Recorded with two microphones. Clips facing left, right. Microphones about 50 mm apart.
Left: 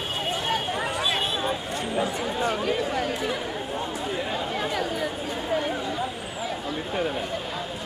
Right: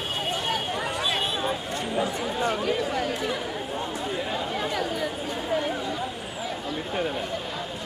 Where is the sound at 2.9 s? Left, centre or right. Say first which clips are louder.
Left 1 dB; centre.